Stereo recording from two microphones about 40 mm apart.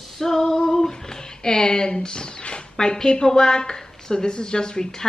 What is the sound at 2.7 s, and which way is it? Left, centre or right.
A woman's voice, centre.